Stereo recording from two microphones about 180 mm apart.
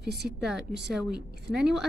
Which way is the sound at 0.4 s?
5° right (ahead or behind).